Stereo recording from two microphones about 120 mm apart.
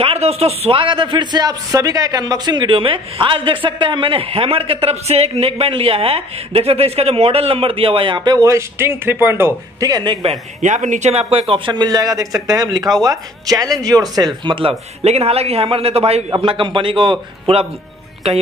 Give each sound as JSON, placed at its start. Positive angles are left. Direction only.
{"t": 0.0, "sound": "a man's voice", "side_deg": -55}
{"t": 9.8, "sound": "speech", "side_deg": -35}
{"t": 10.6, "sound": "a man's voice", "side_deg": -90}
{"t": 16.3, "sound": "a man's voice", "side_deg": -45}